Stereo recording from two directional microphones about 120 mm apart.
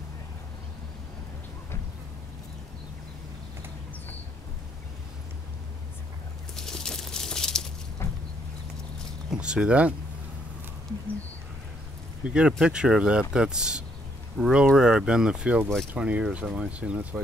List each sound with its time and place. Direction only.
6.5 s a sound: 5° left (ahead or behind)
8.0 s vehicle: 20° left (ahead or behind)
9.3 s speech: 10° right (ahead or behind)
12.3 s speech: 5° right (ahead or behind)